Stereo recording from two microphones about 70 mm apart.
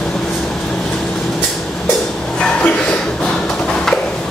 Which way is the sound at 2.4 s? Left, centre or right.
Centre.